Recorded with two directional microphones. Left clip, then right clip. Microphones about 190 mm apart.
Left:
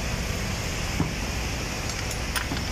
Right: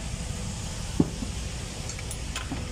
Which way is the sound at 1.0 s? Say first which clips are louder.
Right 7 dB; 25° right (ahead or behind).